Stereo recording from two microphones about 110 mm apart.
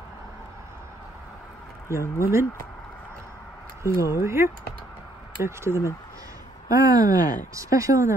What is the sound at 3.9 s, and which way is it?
Speech, 30° left (ahead or behind).